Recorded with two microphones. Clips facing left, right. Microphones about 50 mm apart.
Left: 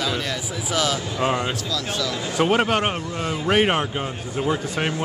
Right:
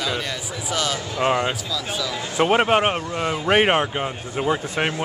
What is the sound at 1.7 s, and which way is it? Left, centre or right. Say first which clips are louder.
Speech: left 1 dB; centre.